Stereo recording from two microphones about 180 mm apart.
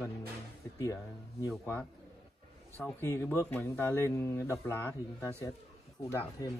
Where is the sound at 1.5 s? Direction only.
5° left (ahead or behind).